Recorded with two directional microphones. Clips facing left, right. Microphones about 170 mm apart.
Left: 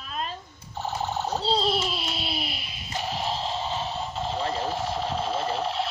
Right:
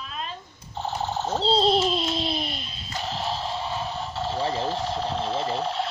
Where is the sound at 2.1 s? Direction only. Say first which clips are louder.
Right 5 dB; 10° left (ahead or behind).